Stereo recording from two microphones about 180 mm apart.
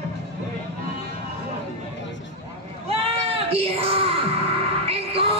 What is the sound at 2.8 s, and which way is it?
Music, 30° right (ahead or behind).